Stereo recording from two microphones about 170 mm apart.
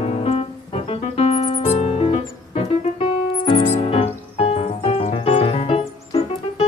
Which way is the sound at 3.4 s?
30° left (ahead or behind).